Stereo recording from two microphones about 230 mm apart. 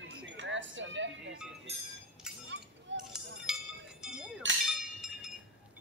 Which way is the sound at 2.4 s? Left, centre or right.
Right.